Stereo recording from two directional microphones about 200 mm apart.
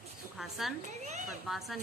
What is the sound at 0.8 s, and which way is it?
Speech, 35° right (ahead or behind).